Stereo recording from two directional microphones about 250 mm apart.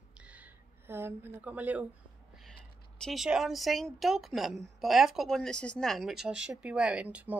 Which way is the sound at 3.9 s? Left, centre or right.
Centre.